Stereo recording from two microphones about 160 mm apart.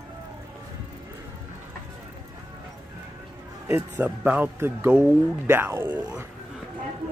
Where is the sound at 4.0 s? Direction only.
10° right (ahead or behind).